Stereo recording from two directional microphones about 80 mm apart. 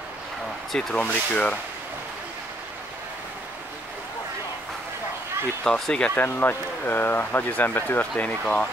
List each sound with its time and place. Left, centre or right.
0.7 s speech: centre
1.0 s speech: centre
5.6 s speech: centre
6.1 s speech: left